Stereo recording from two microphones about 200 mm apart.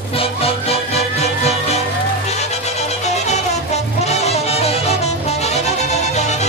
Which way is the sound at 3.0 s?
35° left (ahead or behind).